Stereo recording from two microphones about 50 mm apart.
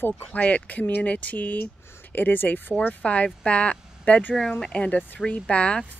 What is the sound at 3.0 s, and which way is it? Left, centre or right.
Speech, left.